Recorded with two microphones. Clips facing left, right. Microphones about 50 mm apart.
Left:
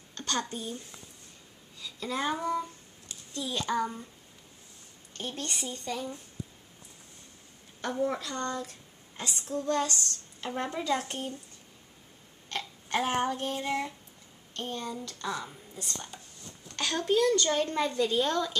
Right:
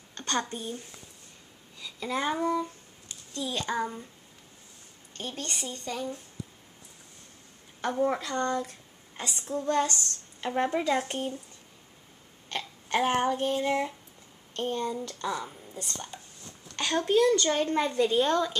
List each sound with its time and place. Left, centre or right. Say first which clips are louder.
0.1 s a woman's voice: right 2 dB; right
1.8 s a child's voice: right 2 dB; centre
5.1 s a child's voice: even; centre
7.8 s a woman's voice: right 3 dB; right
12.4 s burping: right 2 dB; centre
13.5 s speech: right 4 dB; centre
14.5 s speech: right 6 dB; right
15.2 s a child's voice: right 1 dB; centre